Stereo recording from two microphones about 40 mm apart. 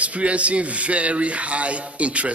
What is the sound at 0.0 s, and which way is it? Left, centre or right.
A man's voice, right.